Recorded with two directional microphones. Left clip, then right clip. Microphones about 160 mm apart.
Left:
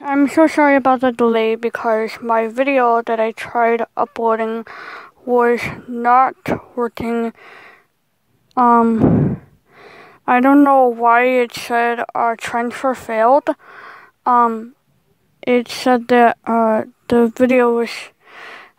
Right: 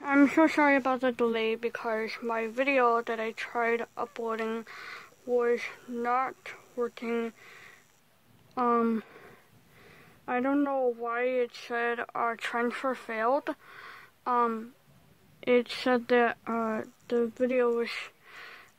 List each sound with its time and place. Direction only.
0.0 s speech: 35° left (ahead or behind)
9.8 s speech: 55° left (ahead or behind)
14.4 s speech: 30° left (ahead or behind)
15.4 s speech: 45° left (ahead or behind)